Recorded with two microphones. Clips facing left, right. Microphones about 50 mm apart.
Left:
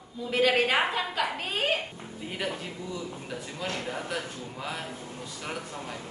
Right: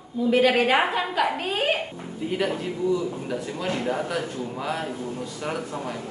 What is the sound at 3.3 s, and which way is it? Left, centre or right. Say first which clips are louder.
Speech: right 7 dB; centre.